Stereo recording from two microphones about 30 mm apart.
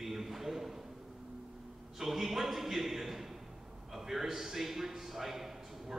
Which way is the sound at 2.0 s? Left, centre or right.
Centre.